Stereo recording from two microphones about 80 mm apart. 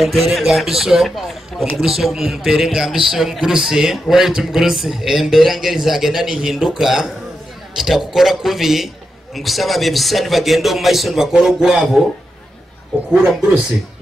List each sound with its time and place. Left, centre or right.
0.0 s a man's voice: centre
13.1 s a man's voice: centre